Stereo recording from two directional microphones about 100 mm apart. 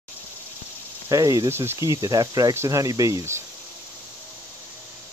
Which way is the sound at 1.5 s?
25° right (ahead or behind).